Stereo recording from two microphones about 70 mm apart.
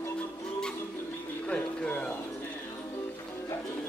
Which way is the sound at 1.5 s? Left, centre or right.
Centre.